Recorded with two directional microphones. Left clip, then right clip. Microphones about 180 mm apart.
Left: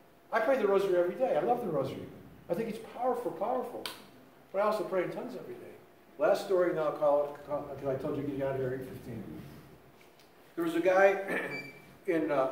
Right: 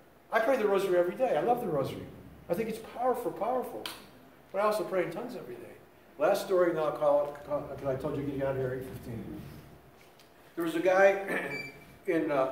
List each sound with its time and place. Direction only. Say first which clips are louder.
0.3 s a man's voice: right 1 dB; 35° right (ahead or behind)
4.6 s a man's voice: right 1 dB; 30° right (ahead or behind)
10.5 s speech: even; 5° right (ahead or behind)